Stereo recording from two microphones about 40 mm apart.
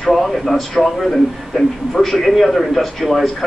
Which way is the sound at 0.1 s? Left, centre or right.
Centre.